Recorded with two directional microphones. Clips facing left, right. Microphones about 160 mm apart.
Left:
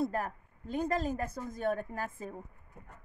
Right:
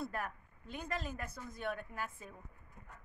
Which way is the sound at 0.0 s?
35° left (ahead or behind).